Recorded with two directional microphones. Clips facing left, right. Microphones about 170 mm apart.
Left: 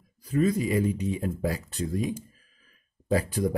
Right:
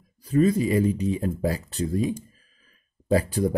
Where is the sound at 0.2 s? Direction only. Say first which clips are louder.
Right 4 dB; 30° right (ahead or behind).